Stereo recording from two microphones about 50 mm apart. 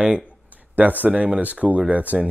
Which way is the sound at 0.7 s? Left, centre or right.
Right.